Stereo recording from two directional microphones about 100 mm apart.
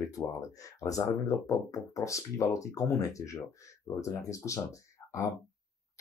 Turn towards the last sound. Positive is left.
turn(degrees=30)  # may be behind; listen again after turning